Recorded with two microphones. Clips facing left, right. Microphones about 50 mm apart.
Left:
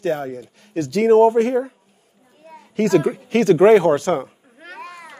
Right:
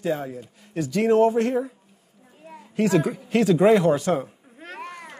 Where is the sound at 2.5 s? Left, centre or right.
Centre.